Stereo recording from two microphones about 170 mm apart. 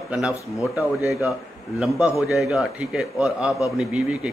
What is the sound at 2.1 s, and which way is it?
Speech, 20° left (ahead or behind).